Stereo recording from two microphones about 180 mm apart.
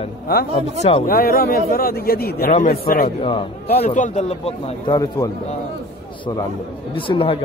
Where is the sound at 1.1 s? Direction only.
55° left (ahead or behind).